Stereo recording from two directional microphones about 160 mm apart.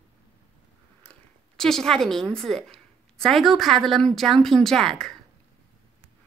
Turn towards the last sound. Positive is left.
turn(degrees=5)  # may be behind; listen again after turning